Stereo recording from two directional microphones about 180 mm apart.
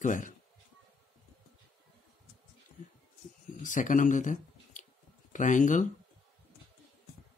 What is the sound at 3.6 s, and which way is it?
Speech, 45° left (ahead or behind).